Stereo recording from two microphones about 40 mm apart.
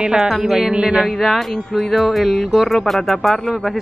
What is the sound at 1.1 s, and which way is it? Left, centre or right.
Speech, centre.